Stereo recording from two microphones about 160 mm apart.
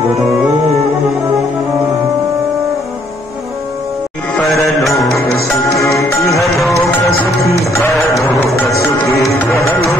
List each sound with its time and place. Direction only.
5.2 s music: centre (ahead or behind)
5.8 s music: 20° left (ahead or behind)
6.5 s music: centre (ahead or behind)
7.7 s music: 20° left (ahead or behind)